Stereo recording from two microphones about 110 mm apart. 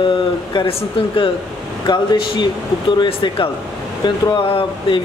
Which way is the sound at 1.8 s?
40° left (ahead or behind).